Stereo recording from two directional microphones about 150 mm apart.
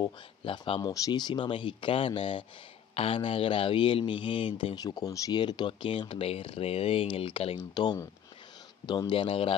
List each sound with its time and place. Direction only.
0.0 s speech: 35° left (ahead or behind)